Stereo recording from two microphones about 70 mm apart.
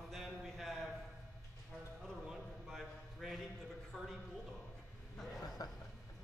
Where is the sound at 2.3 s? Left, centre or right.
Centre.